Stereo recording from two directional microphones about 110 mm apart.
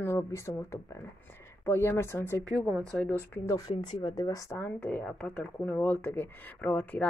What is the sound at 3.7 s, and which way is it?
Speech, 45° left (ahead or behind).